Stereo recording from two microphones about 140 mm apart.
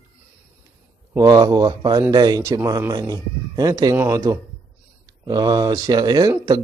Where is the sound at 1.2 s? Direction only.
25° right (ahead or behind).